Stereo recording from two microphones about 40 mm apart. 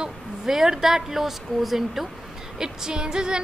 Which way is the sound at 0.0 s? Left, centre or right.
Centre.